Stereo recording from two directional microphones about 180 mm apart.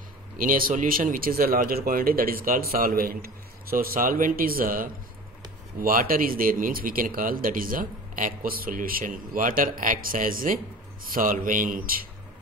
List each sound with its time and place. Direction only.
0.4 s speech: 50° right (ahead or behind)